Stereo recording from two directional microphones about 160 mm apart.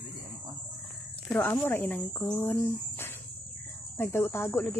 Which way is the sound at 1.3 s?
10° left (ahead or behind).